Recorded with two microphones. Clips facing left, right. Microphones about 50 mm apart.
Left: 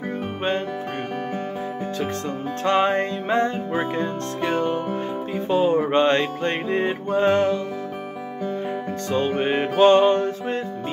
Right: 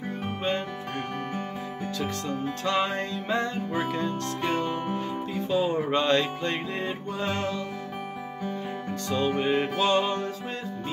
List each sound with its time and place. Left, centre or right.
2.0 s music: left
9.1 s music: left